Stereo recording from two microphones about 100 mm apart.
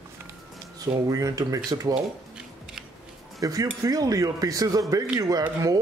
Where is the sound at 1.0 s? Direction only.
35° right (ahead or behind).